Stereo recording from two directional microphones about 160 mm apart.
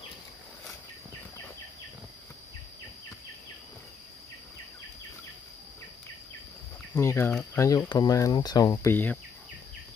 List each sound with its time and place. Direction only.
7.0 s speech: 15° left (ahead or behind)
8.9 s speech: 10° left (ahead or behind)